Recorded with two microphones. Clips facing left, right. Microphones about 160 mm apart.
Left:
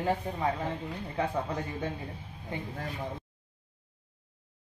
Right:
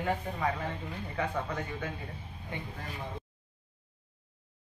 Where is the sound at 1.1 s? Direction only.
30° left (ahead or behind).